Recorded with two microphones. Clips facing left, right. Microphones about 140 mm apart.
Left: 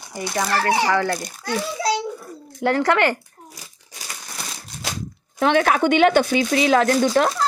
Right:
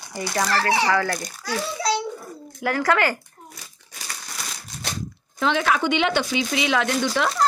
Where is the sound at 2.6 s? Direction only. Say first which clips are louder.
Left 3 dB; 30° left (ahead or behind).